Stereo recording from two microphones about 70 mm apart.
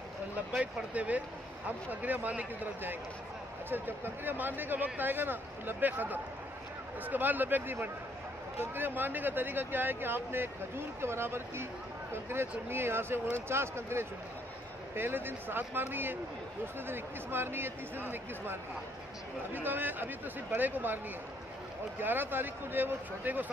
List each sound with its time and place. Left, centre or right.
0.6 s speech: right
22.0 s speech: right